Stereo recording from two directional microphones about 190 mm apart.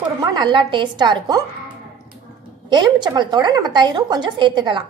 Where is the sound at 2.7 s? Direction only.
25° right (ahead or behind).